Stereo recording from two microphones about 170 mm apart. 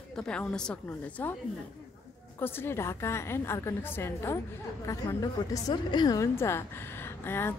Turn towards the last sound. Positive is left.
turn(degrees=15)  # may be behind; listen again after turning